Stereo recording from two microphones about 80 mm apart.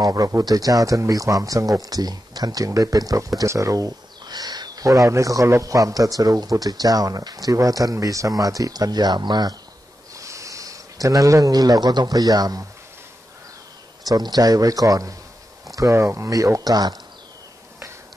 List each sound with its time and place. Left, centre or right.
0.0 s speech: right
4.8 s speech: right
10.1 s speech: right
14.0 s speech: right
15.9 s speech: right
16.3 s speech: right